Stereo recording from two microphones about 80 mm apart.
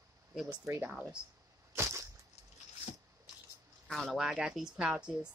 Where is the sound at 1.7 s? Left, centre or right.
Right.